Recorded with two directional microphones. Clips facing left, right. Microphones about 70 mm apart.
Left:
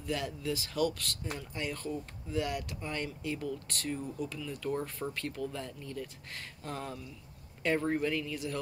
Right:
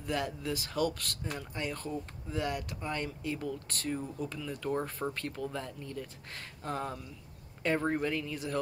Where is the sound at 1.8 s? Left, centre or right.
Right.